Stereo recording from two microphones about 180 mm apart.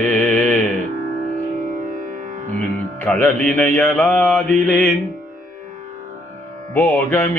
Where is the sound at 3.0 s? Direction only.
10° left (ahead or behind).